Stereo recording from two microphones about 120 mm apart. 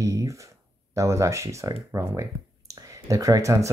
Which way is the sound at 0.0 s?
25° right (ahead or behind).